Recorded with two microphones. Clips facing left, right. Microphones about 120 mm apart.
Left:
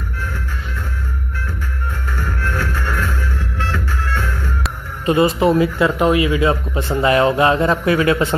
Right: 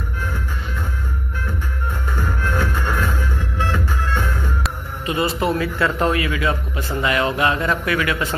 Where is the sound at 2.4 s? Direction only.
15° right (ahead or behind).